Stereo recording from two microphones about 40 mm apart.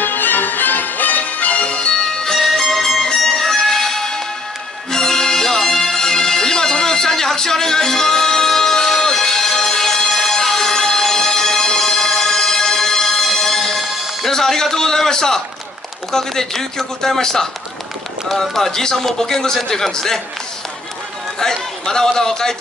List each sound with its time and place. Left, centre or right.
0.0 s music: left
2.0 s music: centre
14.3 s a sound: centre
16.1 s a man's voice: centre
21.4 s a man's voice: centre